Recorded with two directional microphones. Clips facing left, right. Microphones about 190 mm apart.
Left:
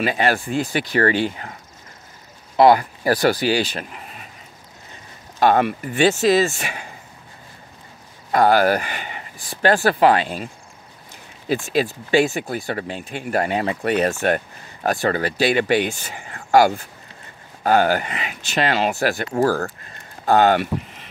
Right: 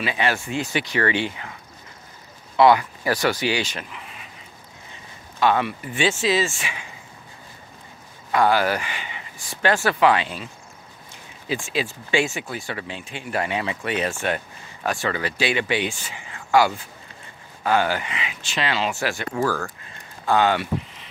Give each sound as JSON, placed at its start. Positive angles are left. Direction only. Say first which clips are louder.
{"t": 0.0, "sound": "speech", "louder": "left 4 dB", "side_deg": 40}
{"t": 5.4, "sound": "speech", "louder": "left 4 dB", "side_deg": 45}
{"t": 8.3, "sound": "speech", "louder": "left 4 dB", "side_deg": 40}